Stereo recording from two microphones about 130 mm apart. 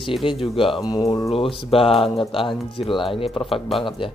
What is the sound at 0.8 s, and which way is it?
Speech, 30° left (ahead or behind).